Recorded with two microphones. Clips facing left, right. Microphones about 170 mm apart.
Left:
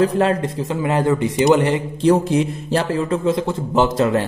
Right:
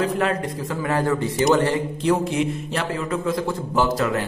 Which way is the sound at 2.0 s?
35° left (ahead or behind).